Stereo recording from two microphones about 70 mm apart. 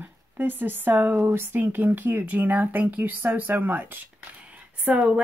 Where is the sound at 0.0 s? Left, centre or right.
Right.